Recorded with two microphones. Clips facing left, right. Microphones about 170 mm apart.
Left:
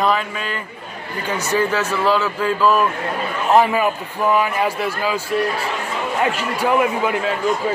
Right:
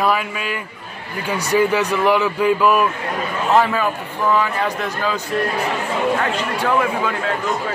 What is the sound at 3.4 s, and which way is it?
A man's voice, 15° left (ahead or behind).